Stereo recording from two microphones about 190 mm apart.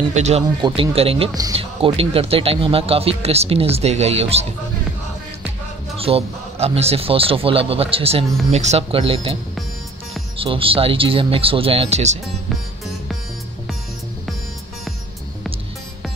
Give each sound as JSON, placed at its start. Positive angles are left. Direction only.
{"t": 0.1, "sound": "speech", "side_deg": -35}
{"t": 0.6, "sound": "speech", "side_deg": -25}
{"t": 5.9, "sound": "speech", "side_deg": -30}